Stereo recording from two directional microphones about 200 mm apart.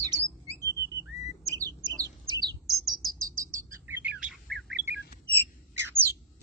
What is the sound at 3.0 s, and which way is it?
Bird, 45° right (ahead or behind).